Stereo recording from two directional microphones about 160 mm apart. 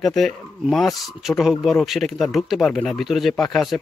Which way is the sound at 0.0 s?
5° left (ahead or behind).